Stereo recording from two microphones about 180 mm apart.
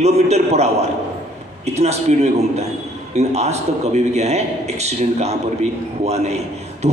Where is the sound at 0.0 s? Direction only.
35° right (ahead or behind).